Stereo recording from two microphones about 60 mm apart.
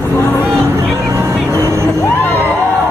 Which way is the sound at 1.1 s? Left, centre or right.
Right.